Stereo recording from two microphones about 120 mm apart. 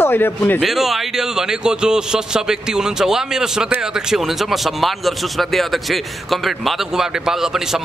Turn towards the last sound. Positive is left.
turn(degrees=-5)  # may be behind; listen again after turning